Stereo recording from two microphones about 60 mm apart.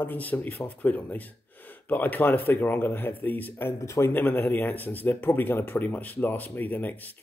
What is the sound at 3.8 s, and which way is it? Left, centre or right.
Speech, left.